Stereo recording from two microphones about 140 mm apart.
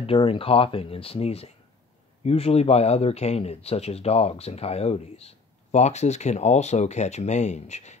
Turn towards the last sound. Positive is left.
turn(degrees=55)  # may be behind; listen again after turning